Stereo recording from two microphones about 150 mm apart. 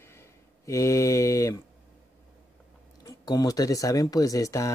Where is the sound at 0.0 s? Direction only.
15° left (ahead or behind).